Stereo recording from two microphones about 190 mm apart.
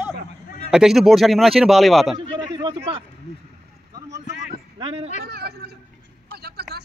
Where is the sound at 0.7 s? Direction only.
Centre (ahead or behind).